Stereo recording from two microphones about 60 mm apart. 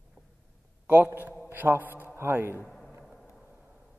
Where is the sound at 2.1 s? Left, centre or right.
Right.